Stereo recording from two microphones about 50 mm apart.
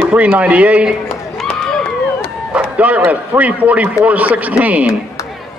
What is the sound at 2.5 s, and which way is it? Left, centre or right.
A man's voice, right.